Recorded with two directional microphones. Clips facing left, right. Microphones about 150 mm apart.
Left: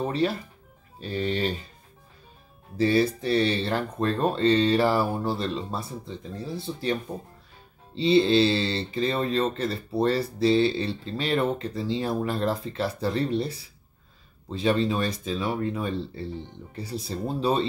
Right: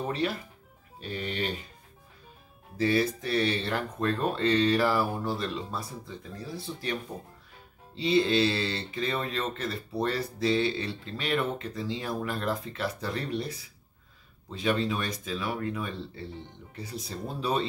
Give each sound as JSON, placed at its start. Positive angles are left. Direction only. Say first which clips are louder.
{"t": 1.0, "sound": "speech", "louder": "left 6 dB", "side_deg": 35}
{"t": 2.8, "sound": "speech", "louder": "left 4 dB", "side_deg": 30}